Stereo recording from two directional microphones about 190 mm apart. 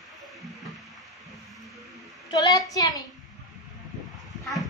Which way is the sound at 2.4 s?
20° left (ahead or behind).